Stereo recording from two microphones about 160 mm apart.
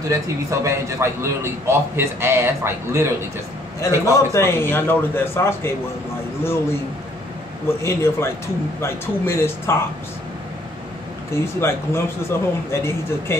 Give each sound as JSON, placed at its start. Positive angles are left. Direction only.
{"t": 0.1, "sound": "a man's voice", "side_deg": -20}
{"t": 3.8, "sound": "speech", "side_deg": 20}
{"t": 7.6, "sound": "speech", "side_deg": 15}
{"t": 11.3, "sound": "speech", "side_deg": 15}